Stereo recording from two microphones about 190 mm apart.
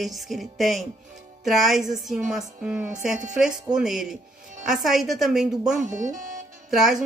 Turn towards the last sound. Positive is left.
turn(degrees=0)  # may be behind; listen again after turning